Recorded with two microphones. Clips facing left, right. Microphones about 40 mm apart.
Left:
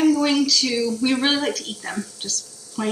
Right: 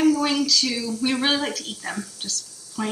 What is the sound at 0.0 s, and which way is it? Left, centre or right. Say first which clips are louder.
Speech: left 2 dB; centre.